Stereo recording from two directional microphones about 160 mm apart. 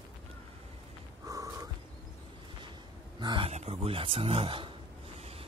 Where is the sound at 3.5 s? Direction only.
40° right (ahead or behind).